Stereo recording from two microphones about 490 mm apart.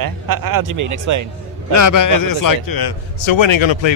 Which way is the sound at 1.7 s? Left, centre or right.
Left.